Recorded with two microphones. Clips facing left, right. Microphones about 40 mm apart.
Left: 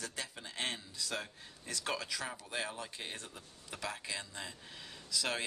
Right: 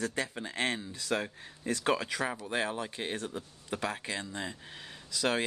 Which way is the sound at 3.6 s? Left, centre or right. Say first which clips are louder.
Right 6 dB; right.